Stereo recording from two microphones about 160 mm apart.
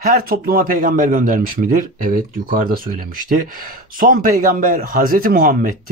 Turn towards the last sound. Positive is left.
turn(degrees=-60)  # may be behind; listen again after turning